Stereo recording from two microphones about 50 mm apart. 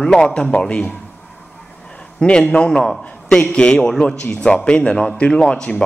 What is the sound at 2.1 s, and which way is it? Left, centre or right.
A man's voice, centre.